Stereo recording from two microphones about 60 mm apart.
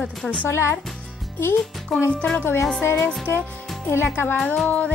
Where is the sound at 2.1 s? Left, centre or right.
Centre.